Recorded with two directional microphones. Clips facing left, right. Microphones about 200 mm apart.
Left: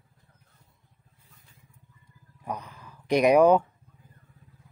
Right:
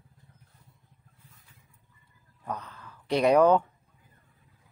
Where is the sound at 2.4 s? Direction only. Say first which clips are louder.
Left 1 dB; 15° left (ahead or behind).